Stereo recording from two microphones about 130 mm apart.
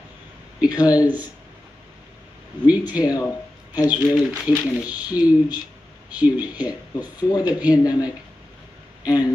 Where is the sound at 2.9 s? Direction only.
30° left (ahead or behind).